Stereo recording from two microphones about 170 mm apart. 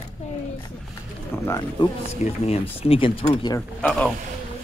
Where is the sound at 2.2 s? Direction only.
35° left (ahead or behind).